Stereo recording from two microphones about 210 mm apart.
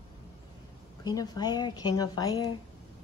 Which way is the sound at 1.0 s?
20° left (ahead or behind).